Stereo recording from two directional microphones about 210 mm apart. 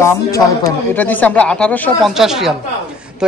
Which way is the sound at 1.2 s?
5° left (ahead or behind).